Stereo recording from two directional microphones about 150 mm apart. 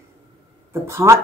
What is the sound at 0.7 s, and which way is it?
Speech, 15° right (ahead or behind).